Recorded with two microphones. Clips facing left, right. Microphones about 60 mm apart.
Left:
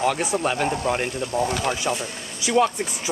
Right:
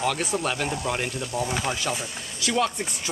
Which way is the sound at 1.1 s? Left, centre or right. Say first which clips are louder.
Left 5 dB; left.